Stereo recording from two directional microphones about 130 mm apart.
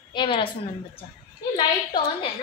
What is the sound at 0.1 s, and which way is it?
Speech, 40° left (ahead or behind).